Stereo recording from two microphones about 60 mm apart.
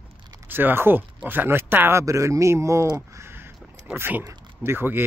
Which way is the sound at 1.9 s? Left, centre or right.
Right.